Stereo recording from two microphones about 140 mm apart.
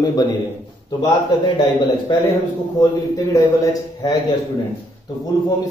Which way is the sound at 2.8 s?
25° left (ahead or behind).